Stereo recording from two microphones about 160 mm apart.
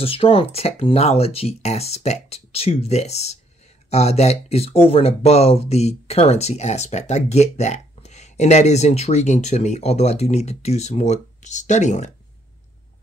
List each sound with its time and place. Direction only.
0.0 s speech: 35° left (ahead or behind)